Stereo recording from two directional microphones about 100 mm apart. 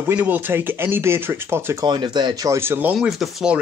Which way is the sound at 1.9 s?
50° right (ahead or behind).